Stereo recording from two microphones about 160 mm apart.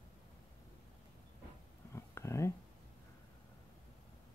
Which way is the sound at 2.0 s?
15° left (ahead or behind).